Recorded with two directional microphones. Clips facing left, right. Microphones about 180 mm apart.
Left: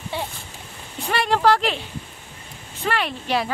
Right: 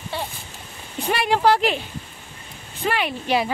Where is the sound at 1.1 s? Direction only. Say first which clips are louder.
Even; 5° right (ahead or behind).